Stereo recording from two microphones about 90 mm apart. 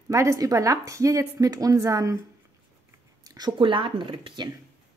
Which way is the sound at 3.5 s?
70° right (ahead or behind).